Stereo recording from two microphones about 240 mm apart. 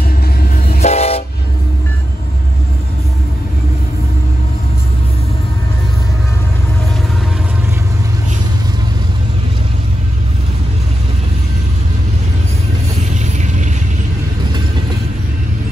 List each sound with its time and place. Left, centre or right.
0.4 s train: left
0.9 s train: left
13.1 s vehicle: right